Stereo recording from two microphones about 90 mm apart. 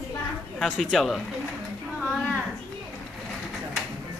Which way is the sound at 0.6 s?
Centre (ahead or behind).